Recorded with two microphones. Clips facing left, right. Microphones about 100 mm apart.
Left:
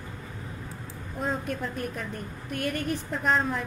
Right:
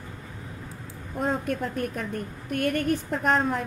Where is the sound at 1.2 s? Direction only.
45° right (ahead or behind).